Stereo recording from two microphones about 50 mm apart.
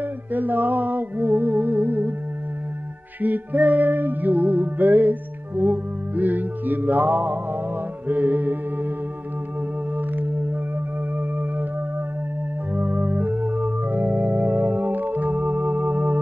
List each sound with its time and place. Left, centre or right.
0.3 s music: right
3.2 s music: right
9.9 s music: right
12.7 s organ: right